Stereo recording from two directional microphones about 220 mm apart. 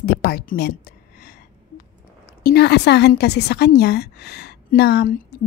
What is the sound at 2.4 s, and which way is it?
A woman's voice, 45° left (ahead or behind).